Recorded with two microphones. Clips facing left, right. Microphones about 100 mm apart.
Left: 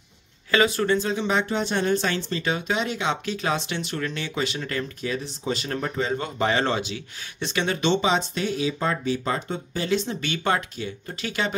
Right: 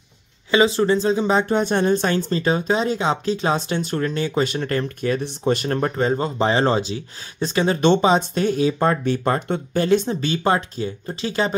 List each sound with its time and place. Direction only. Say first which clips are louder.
0.5 s speech: right 4 dB; 25° right (ahead or behind)
7.8 s speech: right 6 dB; 45° right (ahead or behind)
10.0 s speech: right 5 dB; 35° right (ahead or behind)